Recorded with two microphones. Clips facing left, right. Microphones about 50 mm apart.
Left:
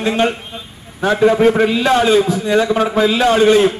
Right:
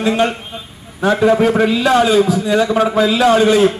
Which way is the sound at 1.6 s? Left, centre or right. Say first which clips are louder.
Right 1 dB; left.